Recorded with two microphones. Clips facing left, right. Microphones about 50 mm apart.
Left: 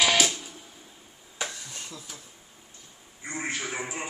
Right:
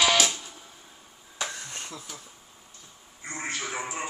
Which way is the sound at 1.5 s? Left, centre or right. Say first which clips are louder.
Right 3 dB; right.